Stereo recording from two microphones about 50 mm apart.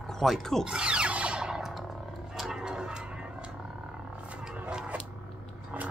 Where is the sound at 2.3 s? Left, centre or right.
Centre.